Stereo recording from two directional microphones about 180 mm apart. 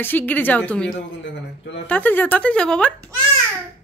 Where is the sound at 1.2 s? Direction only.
85° left.